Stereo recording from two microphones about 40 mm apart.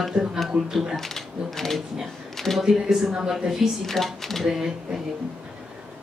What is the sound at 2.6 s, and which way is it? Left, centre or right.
Speech, centre.